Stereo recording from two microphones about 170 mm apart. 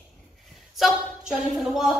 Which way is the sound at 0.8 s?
Centre (ahead or behind).